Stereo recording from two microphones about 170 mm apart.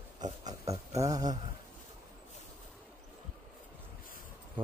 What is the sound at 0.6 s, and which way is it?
Speech, 20° right (ahead or behind).